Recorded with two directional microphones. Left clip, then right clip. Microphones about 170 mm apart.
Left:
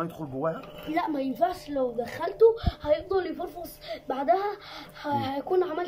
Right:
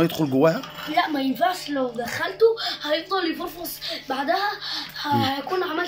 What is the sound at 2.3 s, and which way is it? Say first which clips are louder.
Speech: right 1 dB; 15° left (ahead or behind).